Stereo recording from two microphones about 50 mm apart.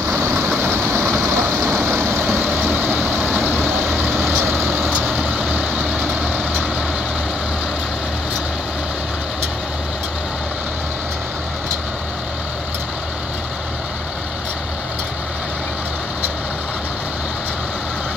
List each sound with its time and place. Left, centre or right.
0.5 s vehicle: right
1.9 s vehicle: right
4.3 s vehicle: right